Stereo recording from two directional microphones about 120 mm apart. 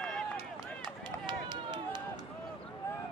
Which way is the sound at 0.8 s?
40° right (ahead or behind).